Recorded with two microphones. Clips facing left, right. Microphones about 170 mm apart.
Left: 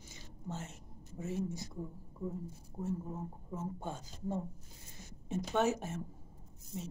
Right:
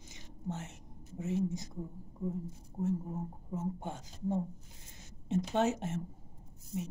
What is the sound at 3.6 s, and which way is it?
A woman's voice, 20° right (ahead or behind).